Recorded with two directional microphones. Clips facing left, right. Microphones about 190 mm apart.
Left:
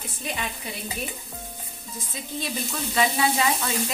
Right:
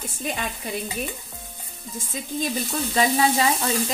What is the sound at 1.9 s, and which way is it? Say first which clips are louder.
Speech: right 5 dB; 50° right (ahead or behind).